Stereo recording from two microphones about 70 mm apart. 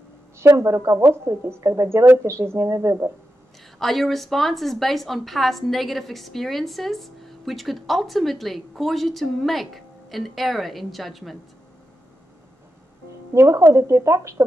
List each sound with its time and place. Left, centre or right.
0.4 s speech: right
3.8 s a woman's voice: centre
13.3 s speech: right